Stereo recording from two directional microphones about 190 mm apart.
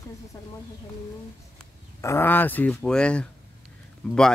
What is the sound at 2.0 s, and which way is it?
Speech, 10° left (ahead or behind).